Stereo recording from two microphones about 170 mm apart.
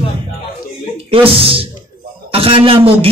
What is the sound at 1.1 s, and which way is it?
A man's voice, 35° right (ahead or behind).